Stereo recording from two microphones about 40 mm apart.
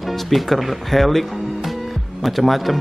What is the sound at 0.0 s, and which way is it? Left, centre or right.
Speech, centre.